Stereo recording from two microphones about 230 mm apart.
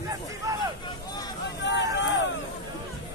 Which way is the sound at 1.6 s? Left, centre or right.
Left.